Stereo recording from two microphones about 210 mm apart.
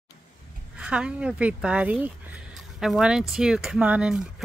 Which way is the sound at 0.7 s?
5° right (ahead or behind).